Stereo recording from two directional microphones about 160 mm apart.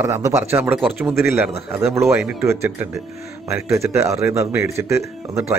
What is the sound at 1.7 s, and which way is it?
Speech, 5° right (ahead or behind).